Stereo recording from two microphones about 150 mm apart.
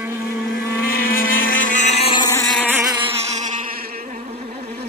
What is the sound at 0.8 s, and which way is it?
Motorboat, 75° left (ahead or behind).